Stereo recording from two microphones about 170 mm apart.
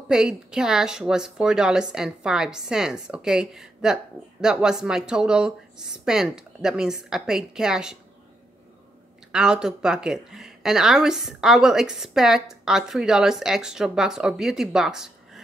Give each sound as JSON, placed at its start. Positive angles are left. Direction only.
{"t": 0.1, "sound": "a woman's voice", "side_deg": -5}
{"t": 9.3, "sound": "a woman's voice", "side_deg": -5}